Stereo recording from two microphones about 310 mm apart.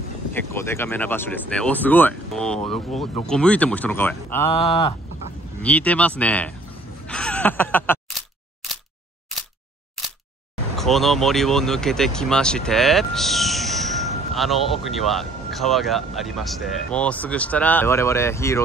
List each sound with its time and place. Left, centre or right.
0.3 s speech: centre
4.6 s speech: centre
5.6 s speech: centre
7.1 s a sound: centre
10.8 s speech: centre